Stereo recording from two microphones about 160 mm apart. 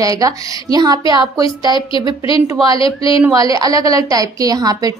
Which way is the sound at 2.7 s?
35° left (ahead or behind).